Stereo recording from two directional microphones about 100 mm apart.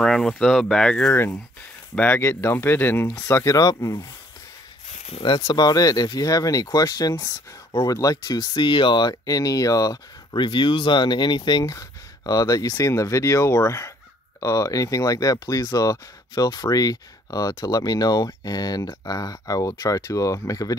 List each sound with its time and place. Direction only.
0.0 s speech: 5° left (ahead or behind)
1.1 s speech: 25° left (ahead or behind)
3.2 s speech: 30° left (ahead or behind)
5.2 s speech: 50° left (ahead or behind)